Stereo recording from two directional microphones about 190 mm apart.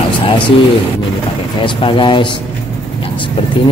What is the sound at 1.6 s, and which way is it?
Speech, 25° left (ahead or behind).